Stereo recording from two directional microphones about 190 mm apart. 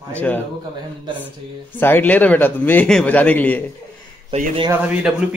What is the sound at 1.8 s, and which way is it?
A man's voice, 10° left (ahead or behind).